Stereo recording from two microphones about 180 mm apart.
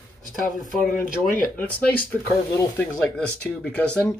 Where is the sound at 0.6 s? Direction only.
50° left (ahead or behind).